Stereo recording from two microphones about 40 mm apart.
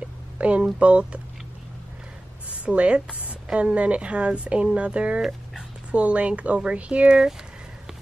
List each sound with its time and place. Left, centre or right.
0.4 s speech: right
2.5 s speech: right